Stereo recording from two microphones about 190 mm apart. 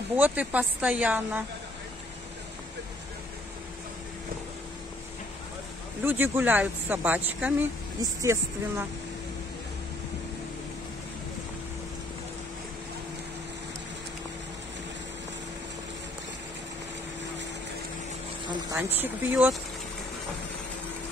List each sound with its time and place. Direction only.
0.1 s speech: 10° right (ahead or behind)
6.0 s speech: 10° right (ahead or behind)
18.8 s speech: 10° right (ahead or behind)